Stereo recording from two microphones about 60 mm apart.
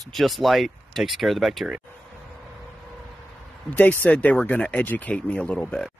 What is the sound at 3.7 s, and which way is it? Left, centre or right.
Speech, left.